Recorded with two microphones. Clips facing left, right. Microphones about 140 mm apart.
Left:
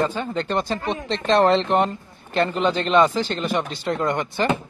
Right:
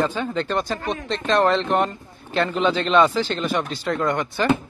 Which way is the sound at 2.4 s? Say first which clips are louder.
Right 2 dB; 10° left (ahead or behind).